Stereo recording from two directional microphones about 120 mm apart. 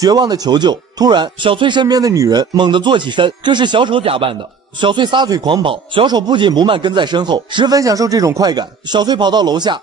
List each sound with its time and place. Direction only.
0.0 s speech: 35° right (ahead or behind)